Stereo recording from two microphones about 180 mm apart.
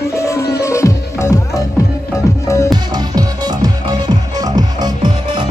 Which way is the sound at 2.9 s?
20° right (ahead or behind).